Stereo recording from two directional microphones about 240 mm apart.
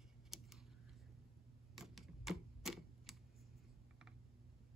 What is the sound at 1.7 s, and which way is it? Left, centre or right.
Typewriter, centre.